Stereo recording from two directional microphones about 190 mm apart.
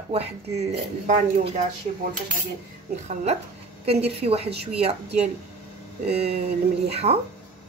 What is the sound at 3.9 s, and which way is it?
Speech, 30° right (ahead or behind).